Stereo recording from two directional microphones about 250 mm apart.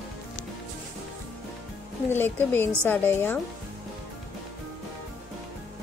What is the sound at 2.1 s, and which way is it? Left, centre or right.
A woman's voice, centre.